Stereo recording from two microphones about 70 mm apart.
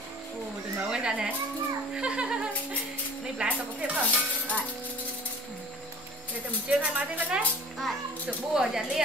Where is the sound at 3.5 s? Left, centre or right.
Right.